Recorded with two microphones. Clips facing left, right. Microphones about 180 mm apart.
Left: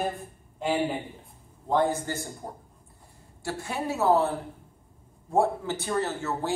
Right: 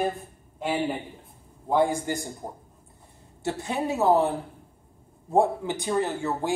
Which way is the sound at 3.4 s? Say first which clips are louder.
Right 4 dB; 20° right (ahead or behind).